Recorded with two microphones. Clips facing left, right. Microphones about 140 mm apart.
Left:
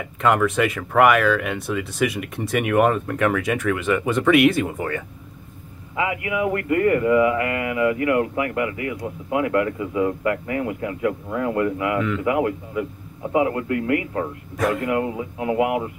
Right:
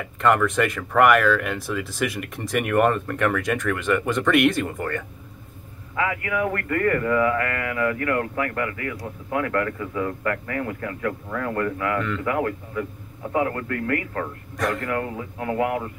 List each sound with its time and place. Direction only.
0.0 s speech: 5° left (ahead or behind)
5.9 s speech: 15° left (ahead or behind)
12.0 s speech: 5° left (ahead or behind)
12.3 s speech: 15° left (ahead or behind)